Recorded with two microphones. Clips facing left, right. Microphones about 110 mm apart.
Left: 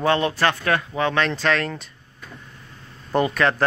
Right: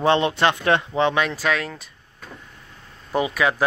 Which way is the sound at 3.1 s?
5° right (ahead or behind).